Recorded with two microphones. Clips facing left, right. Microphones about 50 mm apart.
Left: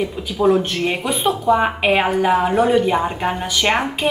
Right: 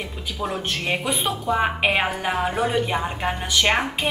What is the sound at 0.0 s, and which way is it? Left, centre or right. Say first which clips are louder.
A woman's voice: left 11 dB; centre.